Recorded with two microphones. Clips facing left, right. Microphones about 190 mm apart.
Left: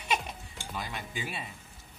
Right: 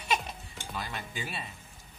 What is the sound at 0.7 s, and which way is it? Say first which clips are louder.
Speech: even; 15° left (ahead or behind).